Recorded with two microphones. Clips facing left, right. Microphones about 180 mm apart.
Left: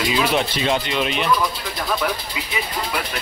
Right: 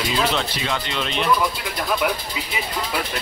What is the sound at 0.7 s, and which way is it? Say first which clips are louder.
Speech: left 5 dB; 15° left (ahead or behind).